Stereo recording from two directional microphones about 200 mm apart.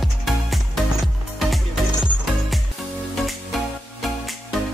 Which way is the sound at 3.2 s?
Centre (ahead or behind).